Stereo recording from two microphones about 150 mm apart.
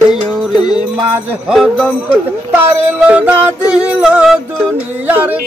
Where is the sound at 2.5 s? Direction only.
15° right (ahead or behind).